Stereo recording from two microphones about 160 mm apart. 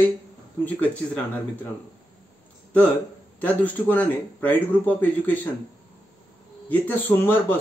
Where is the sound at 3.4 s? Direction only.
10° left (ahead or behind).